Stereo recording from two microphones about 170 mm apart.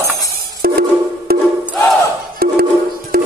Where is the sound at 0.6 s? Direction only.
65° right (ahead or behind).